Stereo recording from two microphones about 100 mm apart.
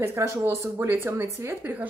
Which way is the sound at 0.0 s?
25° right (ahead or behind).